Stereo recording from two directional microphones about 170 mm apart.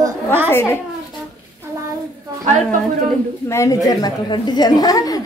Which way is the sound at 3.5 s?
20° left (ahead or behind).